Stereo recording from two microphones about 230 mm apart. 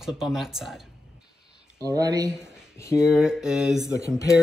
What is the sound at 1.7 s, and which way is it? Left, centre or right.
Speech, centre.